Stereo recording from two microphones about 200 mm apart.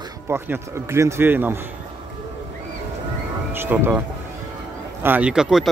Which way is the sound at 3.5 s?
10° right (ahead or behind).